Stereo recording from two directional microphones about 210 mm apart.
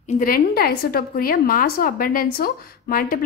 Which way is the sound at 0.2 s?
45° left (ahead or behind).